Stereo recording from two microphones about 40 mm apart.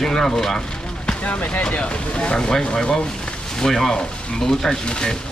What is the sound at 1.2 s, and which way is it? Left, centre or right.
Speech, left.